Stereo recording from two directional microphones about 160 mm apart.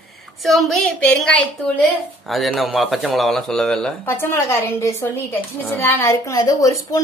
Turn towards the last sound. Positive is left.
turn(degrees=20)  # may be behind; listen again after turning